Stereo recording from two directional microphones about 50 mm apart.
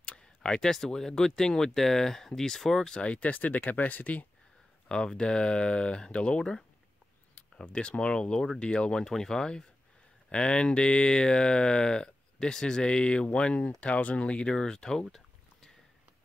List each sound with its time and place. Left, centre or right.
0.0 s speech: centre
3.0 s speech: left
4.8 s speech: centre
14.5 s speech: centre